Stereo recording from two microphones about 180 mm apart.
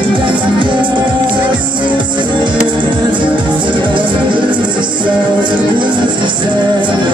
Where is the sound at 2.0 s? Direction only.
25° right (ahead or behind).